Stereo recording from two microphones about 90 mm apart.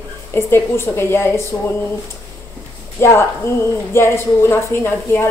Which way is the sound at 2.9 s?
30° left (ahead or behind).